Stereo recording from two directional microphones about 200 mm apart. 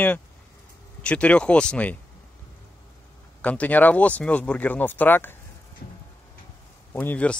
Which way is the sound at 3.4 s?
5° left (ahead or behind).